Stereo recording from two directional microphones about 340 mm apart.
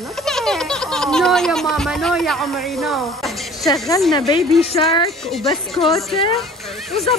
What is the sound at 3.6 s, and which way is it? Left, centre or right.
Speech, centre.